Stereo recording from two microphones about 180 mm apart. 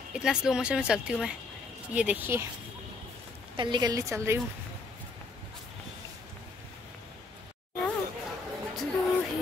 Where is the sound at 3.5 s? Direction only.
25° right (ahead or behind).